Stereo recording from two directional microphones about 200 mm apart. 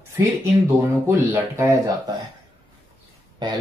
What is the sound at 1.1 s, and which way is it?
Speech, 10° right (ahead or behind).